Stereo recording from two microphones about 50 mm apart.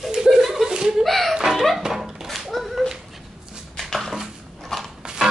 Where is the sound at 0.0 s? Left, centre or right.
Centre.